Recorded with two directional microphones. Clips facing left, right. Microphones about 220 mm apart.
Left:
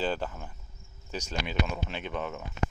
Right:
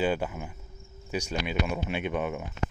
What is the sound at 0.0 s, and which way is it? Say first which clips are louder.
Speech: right 4 dB; 10° right (ahead or behind).